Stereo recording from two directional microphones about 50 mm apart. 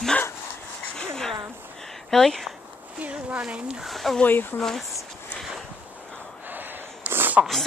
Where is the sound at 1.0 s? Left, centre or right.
Centre.